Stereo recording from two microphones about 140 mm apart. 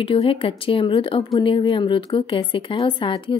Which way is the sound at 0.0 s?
40° left (ahead or behind).